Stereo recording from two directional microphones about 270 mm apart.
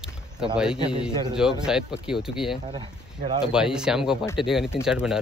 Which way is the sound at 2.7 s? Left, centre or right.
Centre.